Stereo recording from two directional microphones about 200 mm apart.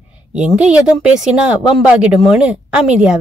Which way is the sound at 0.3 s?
5° right (ahead or behind).